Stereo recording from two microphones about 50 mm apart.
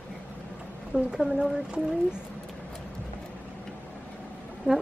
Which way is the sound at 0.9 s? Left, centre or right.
Centre.